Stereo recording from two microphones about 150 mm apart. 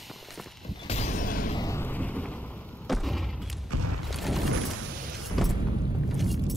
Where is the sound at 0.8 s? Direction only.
45° left (ahead or behind); by 1.5 s 65° left (ahead or behind).